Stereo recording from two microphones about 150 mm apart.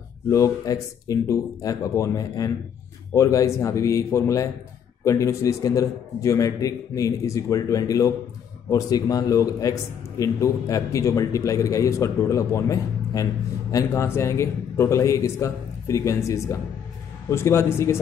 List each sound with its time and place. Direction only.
0.3 s a man's voice: 20° left (ahead or behind)